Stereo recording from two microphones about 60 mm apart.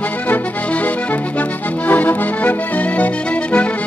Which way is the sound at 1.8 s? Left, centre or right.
Left.